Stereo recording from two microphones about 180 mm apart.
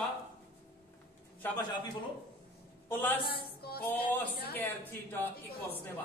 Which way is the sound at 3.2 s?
60° left (ahead or behind).